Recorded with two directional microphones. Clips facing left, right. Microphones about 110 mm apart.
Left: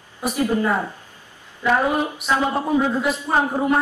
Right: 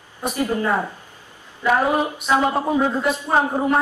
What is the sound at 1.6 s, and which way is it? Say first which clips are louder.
A man's voice: right 1 dB; 5° right (ahead or behind).